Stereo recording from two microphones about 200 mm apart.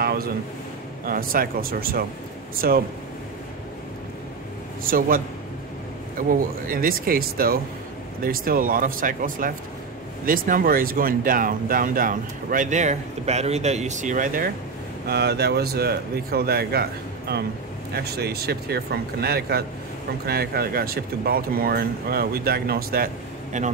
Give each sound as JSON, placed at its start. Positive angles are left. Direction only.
{"t": 0.0, "sound": "a sound", "side_deg": -50}
{"t": 1.0, "sound": "speech", "side_deg": -45}
{"t": 4.8, "sound": "speech", "side_deg": -45}
{"t": 6.7, "sound": "speech", "side_deg": -45}
{"t": 15.0, "sound": "speech", "side_deg": -55}